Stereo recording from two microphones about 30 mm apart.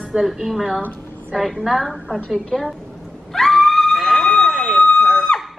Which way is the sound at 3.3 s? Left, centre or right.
Centre.